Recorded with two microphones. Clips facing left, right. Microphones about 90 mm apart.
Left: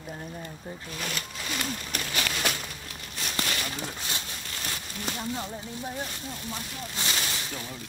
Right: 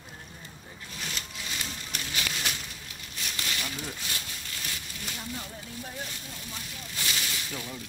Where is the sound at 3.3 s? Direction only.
50° left (ahead or behind).